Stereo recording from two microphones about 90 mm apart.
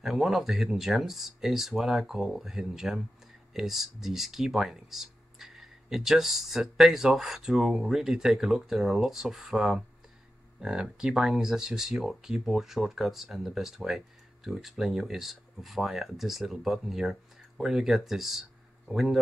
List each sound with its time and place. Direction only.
0.0 s speech: 5° right (ahead or behind)